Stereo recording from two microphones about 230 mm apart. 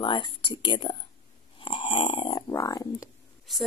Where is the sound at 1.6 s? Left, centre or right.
Left.